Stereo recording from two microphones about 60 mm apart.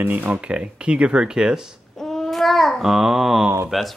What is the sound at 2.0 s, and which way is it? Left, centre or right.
A child's voice, centre.